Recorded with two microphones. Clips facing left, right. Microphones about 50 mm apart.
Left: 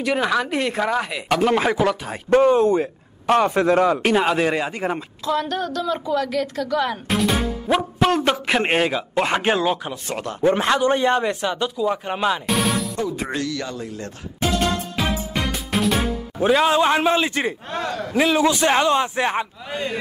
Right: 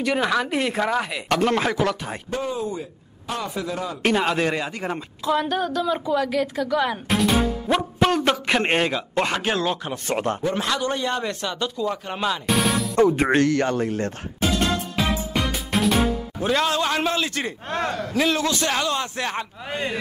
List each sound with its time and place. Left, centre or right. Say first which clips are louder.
0.0 s speech: left 1 dB; centre
2.2 s a man's voice: left 13 dB; left
4.0 s speech: left 2 dB; centre
5.2 s a woman's voice: right 1 dB; centre
9.3 s a man's voice: left 4 dB; left
12.4 s music: even; centre
12.9 s speech: right 7 dB; right
15.5 s music: left 1 dB; centre
16.3 s a man's voice: left 6 dB; centre
17.6 s a man's voice: right 1 dB; right
18.1 s a man's voice: left 5 dB; centre